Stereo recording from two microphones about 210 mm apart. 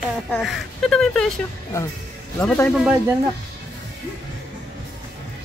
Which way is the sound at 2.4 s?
10° left (ahead or behind).